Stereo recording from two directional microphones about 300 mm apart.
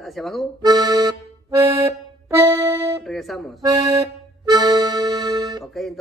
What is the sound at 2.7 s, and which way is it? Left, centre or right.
Music, centre.